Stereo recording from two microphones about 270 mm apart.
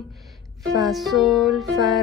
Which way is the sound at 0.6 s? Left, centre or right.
Centre.